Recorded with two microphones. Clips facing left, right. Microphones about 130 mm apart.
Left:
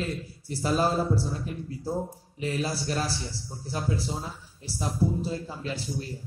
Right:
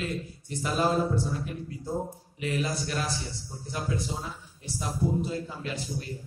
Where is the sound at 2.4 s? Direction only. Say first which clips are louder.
Left 1 dB; 30° left (ahead or behind).